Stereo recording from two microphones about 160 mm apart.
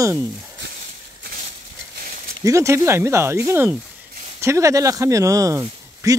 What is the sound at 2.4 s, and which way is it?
Speech, 20° right (ahead or behind).